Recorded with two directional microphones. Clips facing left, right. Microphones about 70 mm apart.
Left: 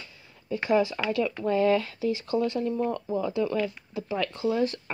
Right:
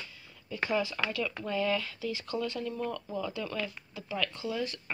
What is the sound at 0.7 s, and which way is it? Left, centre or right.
Speech, left.